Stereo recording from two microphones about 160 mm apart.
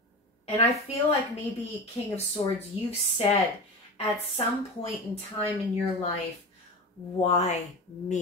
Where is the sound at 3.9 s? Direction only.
40° left (ahead or behind).